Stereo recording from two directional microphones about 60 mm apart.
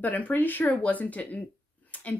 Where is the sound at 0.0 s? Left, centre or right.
Left.